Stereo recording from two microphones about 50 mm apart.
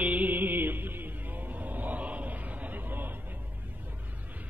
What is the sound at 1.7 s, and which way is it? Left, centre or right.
Chant, right.